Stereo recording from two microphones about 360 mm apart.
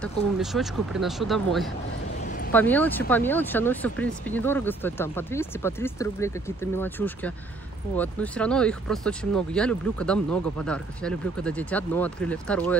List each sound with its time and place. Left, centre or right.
0.0 s speech: centre
2.2 s a sound: left
2.5 s speech: centre